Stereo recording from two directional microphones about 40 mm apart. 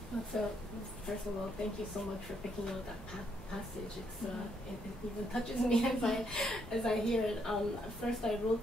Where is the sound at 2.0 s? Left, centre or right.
Centre.